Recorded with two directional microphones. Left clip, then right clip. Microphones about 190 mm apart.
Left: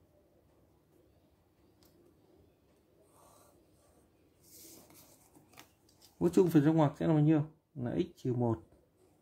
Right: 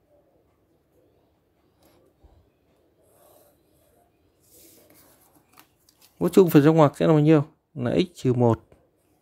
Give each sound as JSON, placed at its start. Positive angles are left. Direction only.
{"t": 6.1, "sound": "speech", "side_deg": -40}